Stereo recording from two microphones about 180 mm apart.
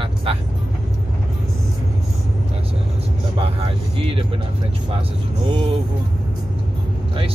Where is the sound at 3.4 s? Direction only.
30° right (ahead or behind).